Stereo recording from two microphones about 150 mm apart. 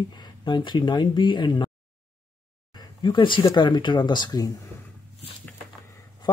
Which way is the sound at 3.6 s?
30° left (ahead or behind).